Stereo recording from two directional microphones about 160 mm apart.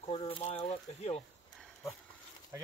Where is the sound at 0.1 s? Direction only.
35° left (ahead or behind).